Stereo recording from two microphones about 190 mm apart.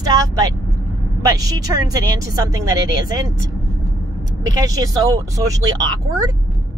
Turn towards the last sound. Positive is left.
turn(degrees=-20)  # may be behind; listen again after turning